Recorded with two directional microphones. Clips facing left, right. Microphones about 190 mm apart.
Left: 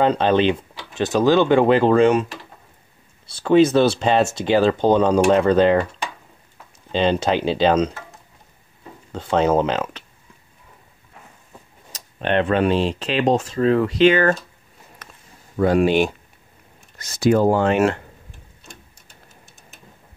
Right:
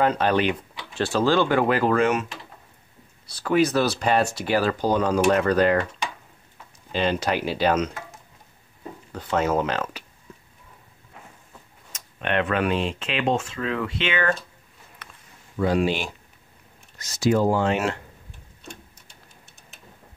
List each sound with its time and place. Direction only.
0.0 s speech: 25° left (ahead or behind)
3.3 s speech: 25° left (ahead or behind)
6.9 s speech: 25° left (ahead or behind)
9.1 s speech: 25° left (ahead or behind)
11.9 s speech: 35° left (ahead or behind)
15.0 s a sound: 40° left (ahead or behind)
15.5 s speech: 55° left (ahead or behind)